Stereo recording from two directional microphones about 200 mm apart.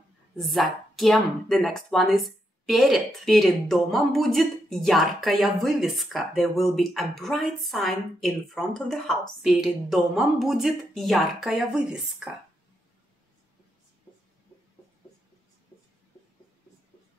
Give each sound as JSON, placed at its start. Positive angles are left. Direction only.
{"t": 0.4, "sound": "speech", "side_deg": 0}